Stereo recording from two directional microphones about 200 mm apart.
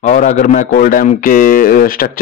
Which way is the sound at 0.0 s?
35° left (ahead or behind).